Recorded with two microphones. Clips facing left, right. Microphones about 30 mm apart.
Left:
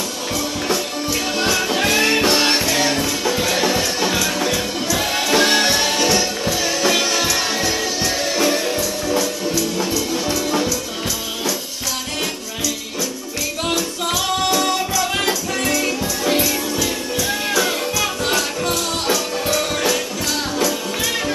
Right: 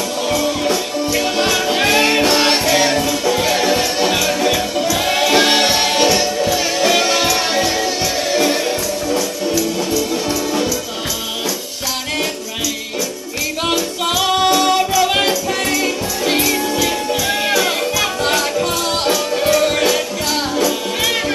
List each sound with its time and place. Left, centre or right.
1.3 s music: centre
3.0 s music: centre; by 6.0 s right
7.2 s music: right
9.6 s music: centre
14.2 s music: right